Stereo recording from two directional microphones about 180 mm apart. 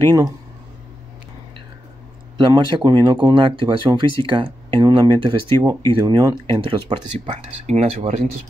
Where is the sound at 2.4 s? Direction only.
25° right (ahead or behind).